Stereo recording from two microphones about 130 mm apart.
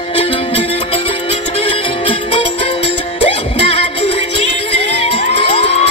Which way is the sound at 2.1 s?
45° left (ahead or behind).